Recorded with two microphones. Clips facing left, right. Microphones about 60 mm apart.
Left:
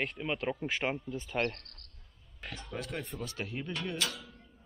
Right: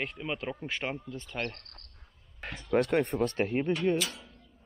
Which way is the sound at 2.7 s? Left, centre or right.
Right.